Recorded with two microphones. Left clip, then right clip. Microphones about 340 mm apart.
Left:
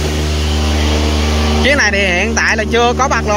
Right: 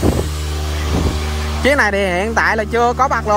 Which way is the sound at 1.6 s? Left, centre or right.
Centre.